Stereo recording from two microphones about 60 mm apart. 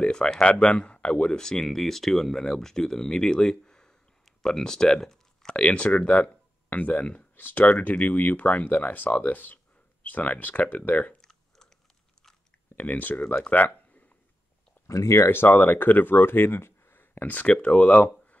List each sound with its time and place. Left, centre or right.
0.0 s speech: centre
11.1 s clicking: centre
12.7 s speech: left
13.3 s a sound: left
14.9 s speech: left
15.2 s speech: left